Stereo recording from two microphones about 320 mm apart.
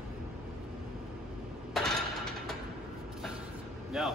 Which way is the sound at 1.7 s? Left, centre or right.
Centre.